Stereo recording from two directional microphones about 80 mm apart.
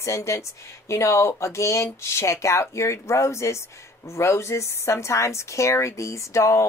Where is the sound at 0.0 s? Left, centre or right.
Left.